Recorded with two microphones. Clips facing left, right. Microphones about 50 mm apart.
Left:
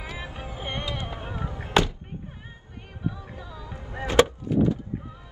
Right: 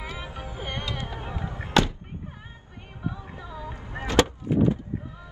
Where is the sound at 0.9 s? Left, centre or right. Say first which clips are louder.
Even; left.